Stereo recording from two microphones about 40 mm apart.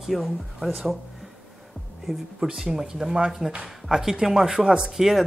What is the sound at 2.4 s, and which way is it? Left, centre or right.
Speech, centre.